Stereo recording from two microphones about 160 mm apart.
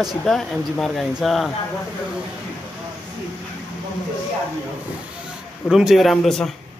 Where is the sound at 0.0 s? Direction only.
Centre (ahead or behind).